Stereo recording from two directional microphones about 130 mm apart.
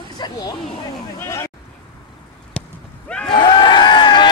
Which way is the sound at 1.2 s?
20° left (ahead or behind).